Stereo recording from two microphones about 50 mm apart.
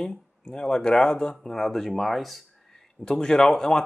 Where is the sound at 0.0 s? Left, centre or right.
Centre.